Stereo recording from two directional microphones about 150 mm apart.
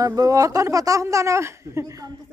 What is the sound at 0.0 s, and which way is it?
A woman's voice, 25° right (ahead or behind).